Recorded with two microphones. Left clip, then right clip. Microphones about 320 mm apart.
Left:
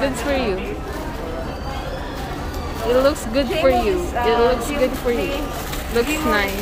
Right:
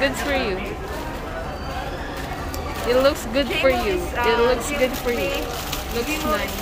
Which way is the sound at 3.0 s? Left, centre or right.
Centre.